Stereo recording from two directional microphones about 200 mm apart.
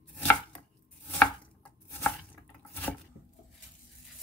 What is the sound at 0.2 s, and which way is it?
Chopping, 5° left (ahead or behind).